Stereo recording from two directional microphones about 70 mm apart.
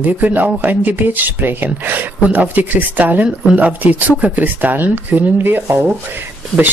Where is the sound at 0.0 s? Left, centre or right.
Right.